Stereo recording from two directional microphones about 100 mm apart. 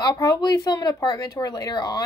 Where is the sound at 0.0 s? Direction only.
40° left (ahead or behind).